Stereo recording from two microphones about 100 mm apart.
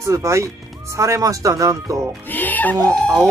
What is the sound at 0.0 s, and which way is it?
Speech, 30° right (ahead or behind).